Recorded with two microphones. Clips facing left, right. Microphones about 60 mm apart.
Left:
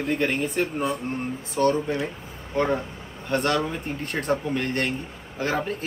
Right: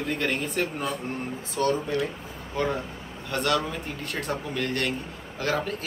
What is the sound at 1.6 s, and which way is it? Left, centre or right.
Speech, left.